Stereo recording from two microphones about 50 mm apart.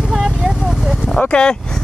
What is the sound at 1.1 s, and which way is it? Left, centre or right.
Speech, left.